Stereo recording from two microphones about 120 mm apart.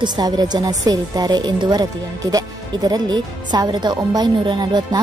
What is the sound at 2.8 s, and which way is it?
Speech, 35° right (ahead or behind).